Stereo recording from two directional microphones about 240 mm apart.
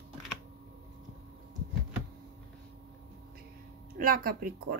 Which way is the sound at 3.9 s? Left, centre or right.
Right.